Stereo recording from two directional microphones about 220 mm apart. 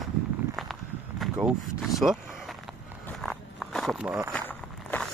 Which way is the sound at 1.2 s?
Centre (ahead or behind).